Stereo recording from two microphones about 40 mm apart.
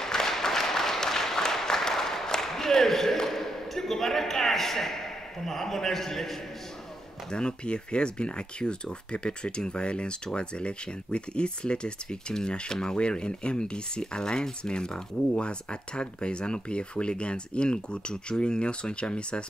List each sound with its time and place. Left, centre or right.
0.0 s applause: centre
5.4 s a man's voice: centre
7.2 s speech: left